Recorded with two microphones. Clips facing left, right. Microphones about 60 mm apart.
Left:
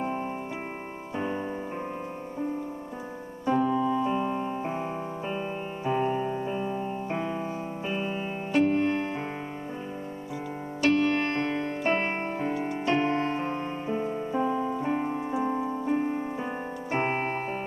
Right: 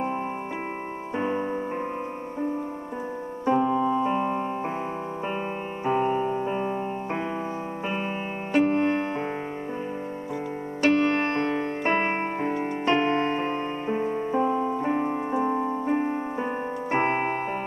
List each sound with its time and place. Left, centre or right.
1.1 s keyboard: right
3.4 s piano: right
5.9 s keyboard: right
6.5 s piano: right
8.6 s music: right
10.9 s keyboard: right
12.6 s music: right
16.9 s keyboard: right